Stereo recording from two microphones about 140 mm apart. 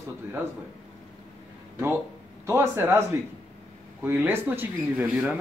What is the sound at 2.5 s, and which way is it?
Speech, 20° right (ahead or behind).